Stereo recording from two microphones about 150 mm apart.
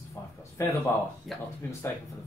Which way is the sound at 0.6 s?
20° left (ahead or behind).